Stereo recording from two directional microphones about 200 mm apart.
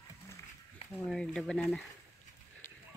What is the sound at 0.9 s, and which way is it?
Speech, centre (ahead or behind).